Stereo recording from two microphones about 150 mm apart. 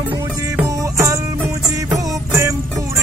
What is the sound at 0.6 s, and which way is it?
Music, 20° right (ahead or behind).